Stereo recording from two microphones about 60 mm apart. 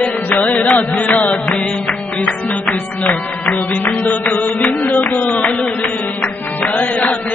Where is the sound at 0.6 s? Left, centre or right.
Left.